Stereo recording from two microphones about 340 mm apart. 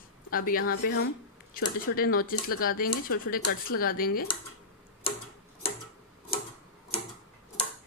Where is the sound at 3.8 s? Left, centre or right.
Left.